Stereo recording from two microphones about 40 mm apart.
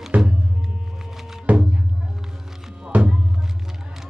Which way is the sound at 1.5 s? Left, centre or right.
Right.